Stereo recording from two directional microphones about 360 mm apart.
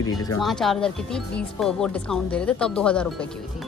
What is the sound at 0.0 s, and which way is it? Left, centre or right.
Speech, centre.